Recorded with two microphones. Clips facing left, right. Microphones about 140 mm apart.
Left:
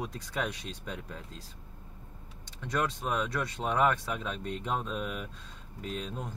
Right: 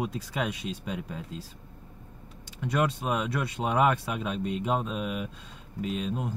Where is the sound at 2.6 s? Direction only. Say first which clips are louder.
Right 4 dB; 10° right (ahead or behind).